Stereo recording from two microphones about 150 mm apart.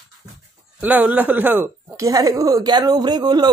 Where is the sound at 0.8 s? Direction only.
10° right (ahead or behind).